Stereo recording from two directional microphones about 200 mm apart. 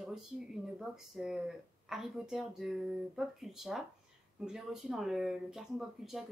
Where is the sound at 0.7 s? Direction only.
Centre (ahead or behind).